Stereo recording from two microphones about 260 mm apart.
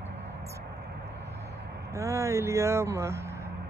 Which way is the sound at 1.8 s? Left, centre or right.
Centre.